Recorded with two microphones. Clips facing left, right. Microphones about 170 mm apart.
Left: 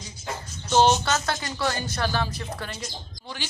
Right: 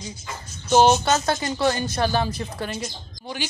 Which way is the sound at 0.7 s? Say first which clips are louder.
Right 3 dB; 15° right (ahead or behind).